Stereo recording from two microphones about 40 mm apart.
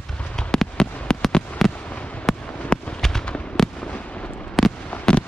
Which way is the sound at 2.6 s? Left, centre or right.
Left.